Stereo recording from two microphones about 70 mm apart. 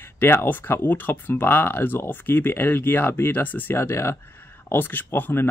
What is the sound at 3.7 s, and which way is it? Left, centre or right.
Speech, left.